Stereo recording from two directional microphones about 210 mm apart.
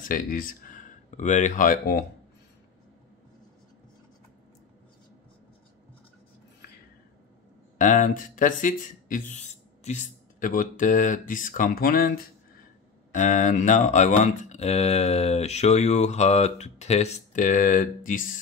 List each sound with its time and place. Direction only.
0.1 s speech: 40° left (ahead or behind)
7.7 s speech: 35° left (ahead or behind)